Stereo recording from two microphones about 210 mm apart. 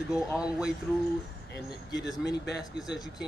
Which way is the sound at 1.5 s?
55° left (ahead or behind).